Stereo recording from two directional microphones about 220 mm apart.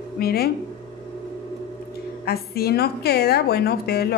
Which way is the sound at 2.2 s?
45° left (ahead or behind).